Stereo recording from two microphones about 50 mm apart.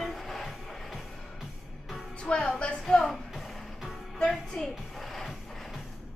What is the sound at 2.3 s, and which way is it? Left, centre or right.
Speech, centre.